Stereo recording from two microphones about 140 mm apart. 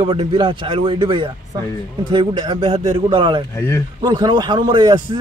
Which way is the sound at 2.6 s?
45° right (ahead or behind).